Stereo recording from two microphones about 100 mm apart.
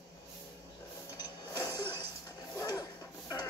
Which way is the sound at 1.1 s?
40° left (ahead or behind).